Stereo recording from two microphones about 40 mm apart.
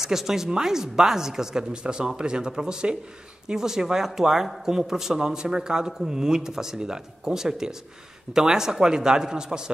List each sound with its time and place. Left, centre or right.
0.0 s a man's voice: centre